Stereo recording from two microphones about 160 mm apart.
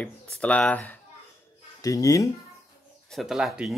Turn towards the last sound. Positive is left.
turn(degrees=-5)  # may be behind; listen again after turning